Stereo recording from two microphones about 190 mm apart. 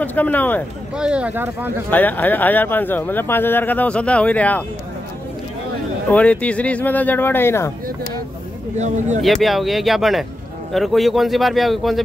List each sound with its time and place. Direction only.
0.0 s speech: 10° left (ahead or behind)
0.9 s speech: 5° right (ahead or behind)
1.9 s speech: 10° left (ahead or behind)
6.0 s speech: 5° left (ahead or behind)
8.7 s speech: 40° right (ahead or behind)
9.2 s speech: centre (ahead or behind)